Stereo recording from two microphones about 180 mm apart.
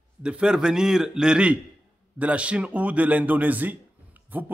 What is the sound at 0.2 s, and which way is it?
A man's voice, 5° right (ahead or behind).